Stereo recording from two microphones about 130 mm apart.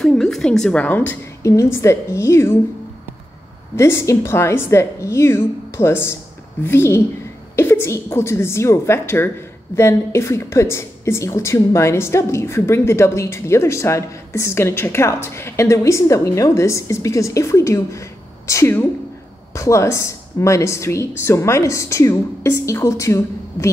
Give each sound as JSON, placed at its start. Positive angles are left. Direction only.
{"t": 0.0, "sound": "a woman's voice", "side_deg": 5}
{"t": 3.7, "sound": "speech", "side_deg": 20}